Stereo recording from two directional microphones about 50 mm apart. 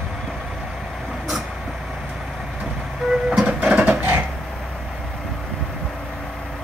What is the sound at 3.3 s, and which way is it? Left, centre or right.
Printer, centre.